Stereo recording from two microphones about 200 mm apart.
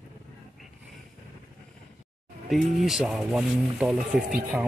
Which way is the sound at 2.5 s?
Centre (ahead or behind).